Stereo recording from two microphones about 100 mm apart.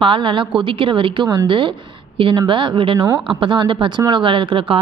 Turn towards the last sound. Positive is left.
turn(degrees=-60)  # may be behind; listen again after turning